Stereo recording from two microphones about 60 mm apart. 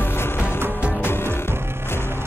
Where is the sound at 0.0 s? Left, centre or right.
Left.